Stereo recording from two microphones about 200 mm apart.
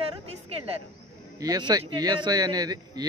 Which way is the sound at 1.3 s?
20° right (ahead or behind).